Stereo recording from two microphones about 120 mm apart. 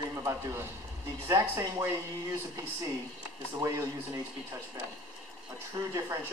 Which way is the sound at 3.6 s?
25° right (ahead or behind).